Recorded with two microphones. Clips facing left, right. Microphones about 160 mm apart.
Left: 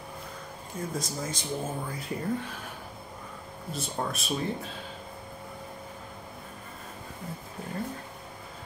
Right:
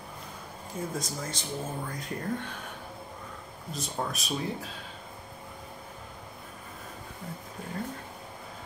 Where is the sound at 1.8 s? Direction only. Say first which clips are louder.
Left 2 dB; 5° left (ahead or behind).